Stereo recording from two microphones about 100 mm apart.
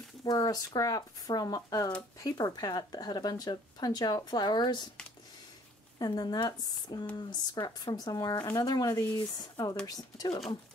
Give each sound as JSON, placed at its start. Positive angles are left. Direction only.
{"t": 0.2, "sound": "speech", "side_deg": 40}
{"t": 5.9, "sound": "speech", "side_deg": 45}